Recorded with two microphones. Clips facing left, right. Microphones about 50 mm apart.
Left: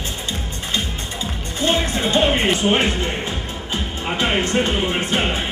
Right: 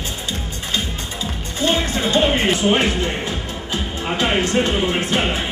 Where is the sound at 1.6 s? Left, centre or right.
Left.